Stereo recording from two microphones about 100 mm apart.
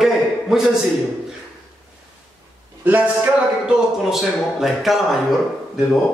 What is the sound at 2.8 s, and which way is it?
A man's voice, 15° right (ahead or behind).